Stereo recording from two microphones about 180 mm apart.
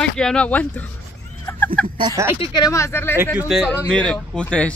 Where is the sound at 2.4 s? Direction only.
25° left (ahead or behind).